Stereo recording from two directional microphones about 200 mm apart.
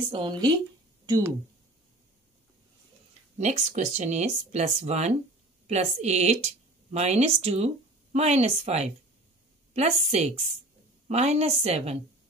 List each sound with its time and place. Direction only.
0.1 s speech: 25° right (ahead or behind)
3.3 s speech: 35° right (ahead or behind)